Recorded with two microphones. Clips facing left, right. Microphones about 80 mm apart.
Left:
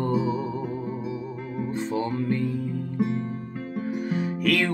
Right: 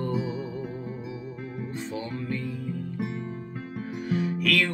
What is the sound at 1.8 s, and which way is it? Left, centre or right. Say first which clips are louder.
Music: left 7 dB; left.